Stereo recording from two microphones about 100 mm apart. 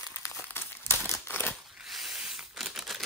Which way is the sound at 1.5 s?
Centre (ahead or behind).